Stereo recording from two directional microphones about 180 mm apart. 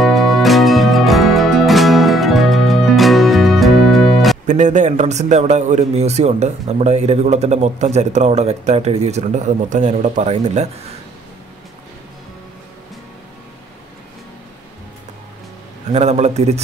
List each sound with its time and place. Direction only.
0.0 s music: centre (ahead or behind)
4.5 s a man's voice: 40° right (ahead or behind)
15.9 s a man's voice: 40° right (ahead or behind)